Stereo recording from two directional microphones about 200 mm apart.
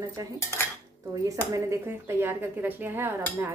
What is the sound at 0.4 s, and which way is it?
Cutlery, 15° left (ahead or behind).